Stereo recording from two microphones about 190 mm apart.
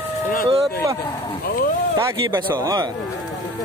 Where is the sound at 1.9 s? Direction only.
15° right (ahead or behind).